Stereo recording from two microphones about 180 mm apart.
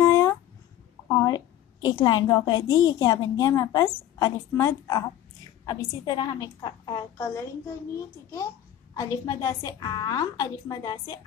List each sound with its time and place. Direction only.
0.1 s a sound: 15° left (ahead or behind)
1.0 s a woman's voice: 15° left (ahead or behind)
8.9 s a woman's voice: 20° left (ahead or behind)